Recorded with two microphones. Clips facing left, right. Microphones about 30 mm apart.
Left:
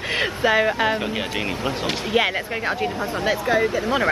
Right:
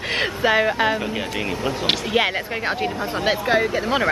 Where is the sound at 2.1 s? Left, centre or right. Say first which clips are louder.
Left 2 dB; centre.